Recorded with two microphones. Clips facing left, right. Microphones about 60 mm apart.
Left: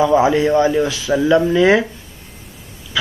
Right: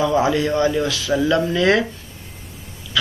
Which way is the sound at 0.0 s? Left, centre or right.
Left.